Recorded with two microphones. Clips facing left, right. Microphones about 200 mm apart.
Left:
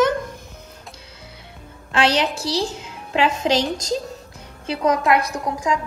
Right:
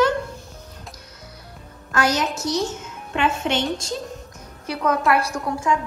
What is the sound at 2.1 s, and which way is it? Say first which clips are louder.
Speech: left 1 dB; 30° left (ahead or behind).